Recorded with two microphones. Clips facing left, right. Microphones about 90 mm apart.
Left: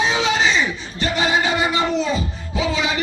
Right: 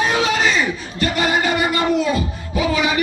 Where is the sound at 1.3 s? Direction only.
50° right (ahead or behind).